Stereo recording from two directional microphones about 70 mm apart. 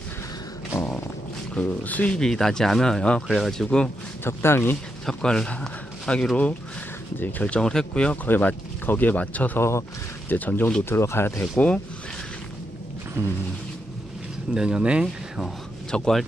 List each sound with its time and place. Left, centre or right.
1.5 s speech: left
2.1 s speech: centre
4.2 s speech: left
5.0 s speech: centre
8.3 s speech: left
9.6 s speech: left
10.3 s speech: left
10.9 s speech: left
11.5 s speech: centre
13.2 s a sound: right
14.5 s speech: centre
15.9 s speech: centre